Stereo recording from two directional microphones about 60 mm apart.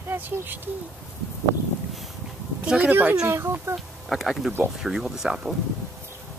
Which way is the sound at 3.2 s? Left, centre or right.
Right.